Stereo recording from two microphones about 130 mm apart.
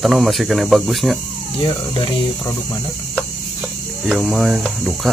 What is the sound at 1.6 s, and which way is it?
Speech, 40° left (ahead or behind).